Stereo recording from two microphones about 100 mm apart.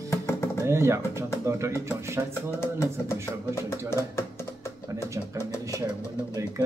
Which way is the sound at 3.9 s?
30° left (ahead or behind).